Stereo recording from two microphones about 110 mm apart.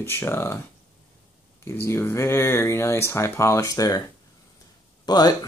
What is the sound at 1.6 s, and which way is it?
Speech, 25° left (ahead or behind).